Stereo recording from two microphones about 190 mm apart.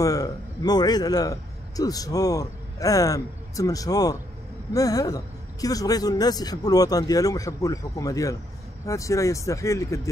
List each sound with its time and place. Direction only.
0.0 s a man's voice: 20° left (ahead or behind)